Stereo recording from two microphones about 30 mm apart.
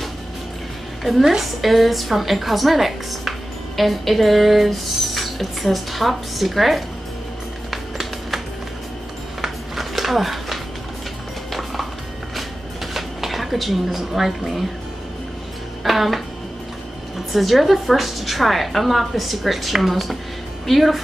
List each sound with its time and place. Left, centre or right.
1.0 s a woman's voice: centre
7.7 s music: centre
9.4 s a sound: centre
12.9 s speech: centre
15.8 s a woman's voice: centre
17.3 s a woman's voice: centre